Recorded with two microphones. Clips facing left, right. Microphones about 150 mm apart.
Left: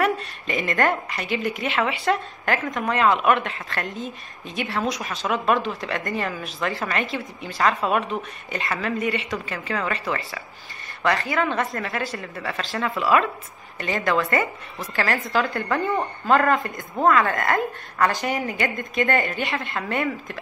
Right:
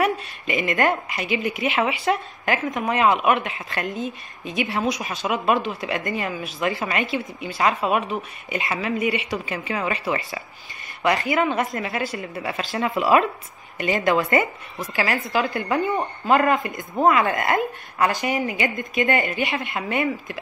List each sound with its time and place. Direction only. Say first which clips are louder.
0.2 s speech: right 2 dB; 5° right (ahead or behind)
14.8 s speech: right 1 dB; 5° right (ahead or behind)